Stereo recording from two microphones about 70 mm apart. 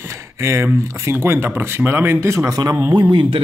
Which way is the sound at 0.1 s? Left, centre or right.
Right.